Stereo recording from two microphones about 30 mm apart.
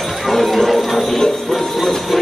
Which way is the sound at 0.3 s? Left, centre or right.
Centre.